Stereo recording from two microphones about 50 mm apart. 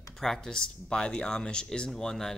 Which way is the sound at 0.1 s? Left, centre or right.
Centre.